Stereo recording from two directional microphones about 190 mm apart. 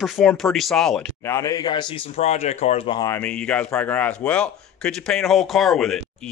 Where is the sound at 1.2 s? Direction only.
15° left (ahead or behind); by 3.0 s 35° left (ahead or behind).